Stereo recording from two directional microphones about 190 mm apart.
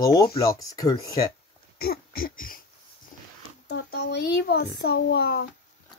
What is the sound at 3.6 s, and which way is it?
A child's voice, 60° left (ahead or behind).